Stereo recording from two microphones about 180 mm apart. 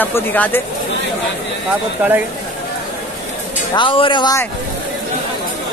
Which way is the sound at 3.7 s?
30° left (ahead or behind).